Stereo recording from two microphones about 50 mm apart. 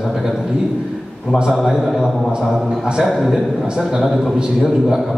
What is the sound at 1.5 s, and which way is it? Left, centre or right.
A man's voice, centre.